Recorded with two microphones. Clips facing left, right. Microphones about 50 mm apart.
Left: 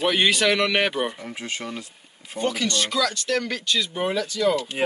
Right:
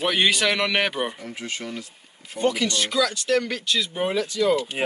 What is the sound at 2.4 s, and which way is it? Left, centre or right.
Speech, centre.